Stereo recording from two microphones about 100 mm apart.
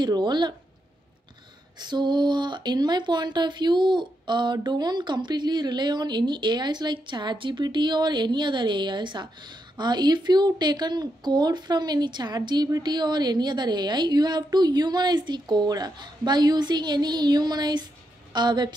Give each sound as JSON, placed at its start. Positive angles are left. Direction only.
{"t": 0.0, "sound": "speech", "side_deg": -50}
{"t": 1.8, "sound": "a woman's voice", "side_deg": -45}